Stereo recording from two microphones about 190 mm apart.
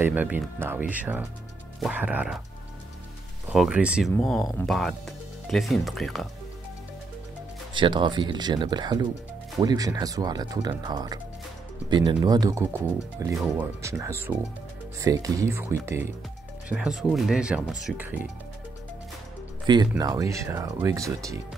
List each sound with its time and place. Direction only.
0.0 s speech: 10° right (ahead or behind)
3.4 s speech: 5° right (ahead or behind)
7.7 s speech: 25° right (ahead or behind); by 18.2 s 10° right (ahead or behind)
19.6 s speech: 25° right (ahead or behind)